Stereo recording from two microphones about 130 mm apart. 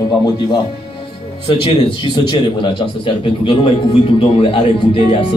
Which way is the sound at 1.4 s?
40° left (ahead or behind).